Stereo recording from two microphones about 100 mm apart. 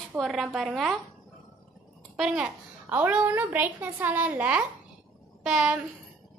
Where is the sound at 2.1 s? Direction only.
5° right (ahead or behind).